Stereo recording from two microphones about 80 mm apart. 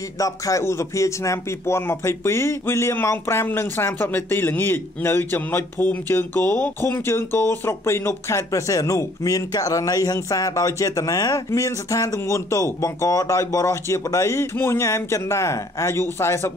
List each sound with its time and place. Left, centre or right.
0.2 s speech: left